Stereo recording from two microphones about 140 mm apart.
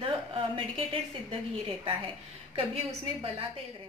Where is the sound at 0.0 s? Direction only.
40° right (ahead or behind).